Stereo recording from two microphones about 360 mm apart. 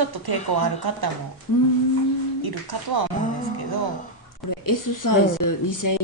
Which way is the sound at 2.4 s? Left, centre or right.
Right.